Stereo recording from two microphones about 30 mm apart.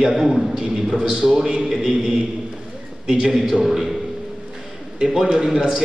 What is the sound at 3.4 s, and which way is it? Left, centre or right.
Speech, right.